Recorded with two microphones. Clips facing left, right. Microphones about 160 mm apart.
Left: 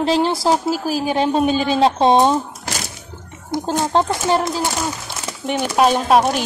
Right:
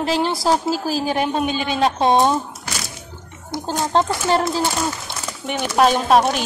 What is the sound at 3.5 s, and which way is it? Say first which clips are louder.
Speech: left 3 dB; 20° left (ahead or behind).